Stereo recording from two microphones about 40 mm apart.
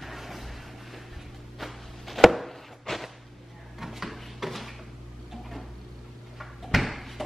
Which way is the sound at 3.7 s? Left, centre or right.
Centre.